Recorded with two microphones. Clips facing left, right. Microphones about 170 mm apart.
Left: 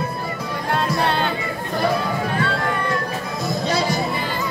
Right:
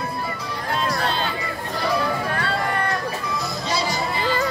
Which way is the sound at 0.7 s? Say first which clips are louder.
Left 3 dB; 60° left (ahead or behind).